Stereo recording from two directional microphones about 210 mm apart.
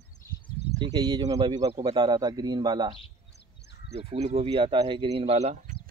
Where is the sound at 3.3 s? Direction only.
55° left (ahead or behind).